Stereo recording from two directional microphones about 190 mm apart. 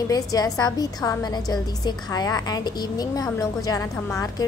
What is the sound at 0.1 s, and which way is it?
A woman's voice, 20° left (ahead or behind).